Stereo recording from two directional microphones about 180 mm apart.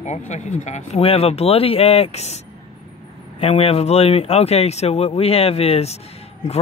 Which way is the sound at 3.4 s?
30° left (ahead or behind).